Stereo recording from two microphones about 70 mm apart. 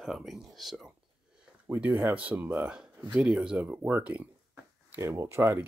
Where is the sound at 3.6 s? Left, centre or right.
Right.